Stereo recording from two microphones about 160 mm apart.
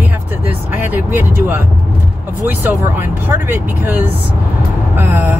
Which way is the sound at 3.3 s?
10° right (ahead or behind).